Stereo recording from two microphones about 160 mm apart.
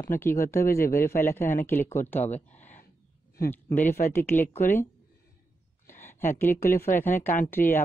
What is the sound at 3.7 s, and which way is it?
Speech, 10° left (ahead or behind).